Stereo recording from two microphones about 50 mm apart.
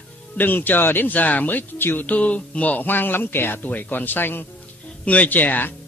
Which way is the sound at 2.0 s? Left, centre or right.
Left.